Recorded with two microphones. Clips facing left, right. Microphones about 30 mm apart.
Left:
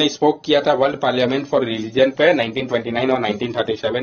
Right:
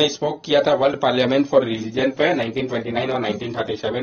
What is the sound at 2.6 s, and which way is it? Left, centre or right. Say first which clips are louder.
A man's voice: left 3 dB; left.